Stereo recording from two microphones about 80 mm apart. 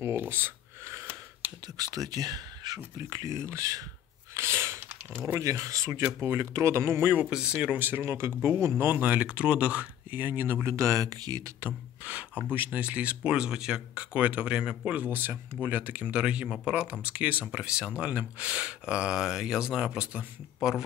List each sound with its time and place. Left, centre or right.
0.0 s a sound: right
1.8 s speech: right
3.1 s speech: right
4.3 s a sound: right
5.4 s speech: right
7.2 s speech: centre
8.0 s speech: right
12.0 s speech: centre